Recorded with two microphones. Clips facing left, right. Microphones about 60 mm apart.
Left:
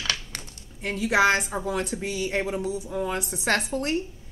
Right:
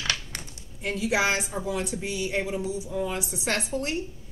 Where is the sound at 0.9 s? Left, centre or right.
Left.